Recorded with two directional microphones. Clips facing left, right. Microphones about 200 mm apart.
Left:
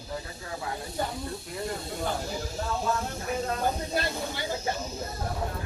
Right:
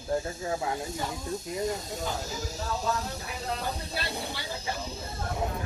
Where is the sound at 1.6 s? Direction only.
40° right (ahead or behind).